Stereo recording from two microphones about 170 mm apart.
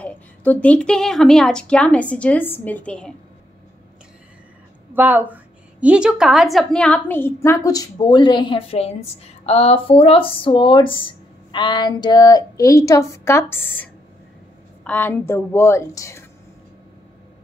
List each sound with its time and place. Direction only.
0.0 s speech: 10° left (ahead or behind)
4.9 s a woman's voice: 10° right (ahead or behind); by 13.8 s 10° left (ahead or behind)
14.9 s speech: 10° left (ahead or behind)